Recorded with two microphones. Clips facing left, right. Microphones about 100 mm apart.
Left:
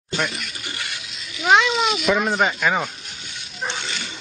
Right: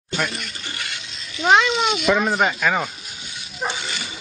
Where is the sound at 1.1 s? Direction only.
Centre (ahead or behind).